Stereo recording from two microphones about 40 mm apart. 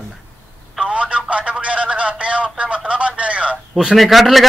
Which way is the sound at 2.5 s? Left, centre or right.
Right.